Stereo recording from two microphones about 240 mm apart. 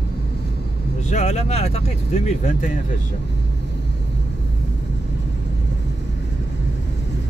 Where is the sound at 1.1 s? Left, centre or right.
Left.